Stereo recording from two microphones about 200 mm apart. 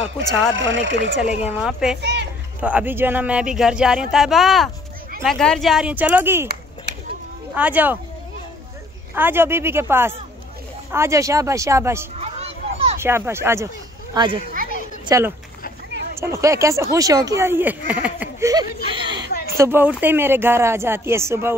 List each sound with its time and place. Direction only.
0.5 s speech: 70° right (ahead or behind)
1.5 s speech: 5° right (ahead or behind)
2.0 s speech: 60° right (ahead or behind)
2.6 s speech: 10° right (ahead or behind)
6.4 s a sound: 55° right (ahead or behind)
7.5 s speech: 10° right (ahead or behind)
9.1 s speech: 10° right (ahead or behind)
12.2 s a sound: 30° right (ahead or behind)
13.0 s speech: 10° right (ahead or behind)
14.1 s speech: 25° right (ahead or behind)
18.5 s speech: 20° right (ahead or behind)
19.5 s speech: 10° right (ahead or behind)